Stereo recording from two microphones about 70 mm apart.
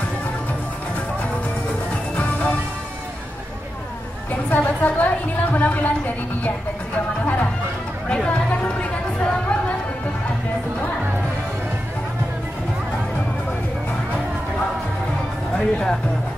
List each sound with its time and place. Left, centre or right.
2.1 s music: left
4.3 s a woman's voice: left
8.1 s chatter: centre
15.5 s speech: centre